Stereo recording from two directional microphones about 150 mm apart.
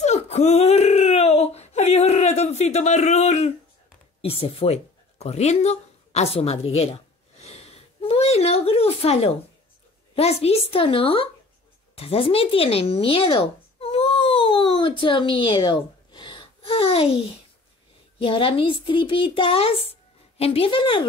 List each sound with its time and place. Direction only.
0.0 s whimper: 50° left (ahead or behind)
4.2 s a child's voice: 40° left (ahead or behind)
5.2 s a sound: 45° left (ahead or behind)
10.1 s a child's voice: 45° left (ahead or behind)
11.9 s a sound: 40° left (ahead or behind)
18.2 s a child's voice: 35° left (ahead or behind)